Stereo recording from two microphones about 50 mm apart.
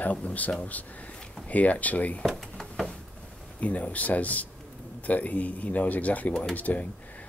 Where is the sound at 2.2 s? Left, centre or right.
Centre.